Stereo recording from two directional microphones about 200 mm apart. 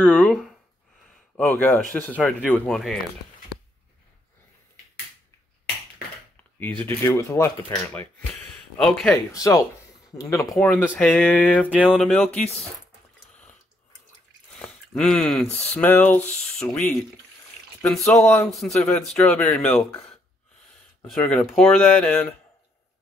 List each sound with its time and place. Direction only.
0.0 s speech: 5° left (ahead or behind)
7.1 s speech: 15° left (ahead or behind)
9.1 s speech: 15° left (ahead or behind)
11.6 s a sound: 5° right (ahead or behind)
12.1 s speech: 5° left (ahead or behind)
14.6 s a sound: 5° left (ahead or behind)
15.7 s speech: 10° left (ahead or behind)